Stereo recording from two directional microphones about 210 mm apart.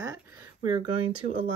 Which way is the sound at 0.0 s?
15° right (ahead or behind).